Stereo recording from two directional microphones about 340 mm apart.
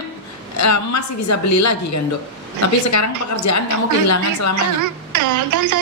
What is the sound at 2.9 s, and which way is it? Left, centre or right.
A woman's voice, left.